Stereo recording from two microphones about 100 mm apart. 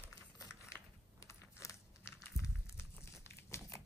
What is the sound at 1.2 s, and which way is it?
Crumpling, 30° left (ahead or behind).